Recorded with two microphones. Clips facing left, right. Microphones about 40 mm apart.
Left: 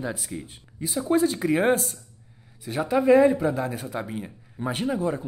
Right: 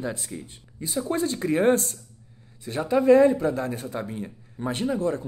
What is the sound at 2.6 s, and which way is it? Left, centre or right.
Speech, centre.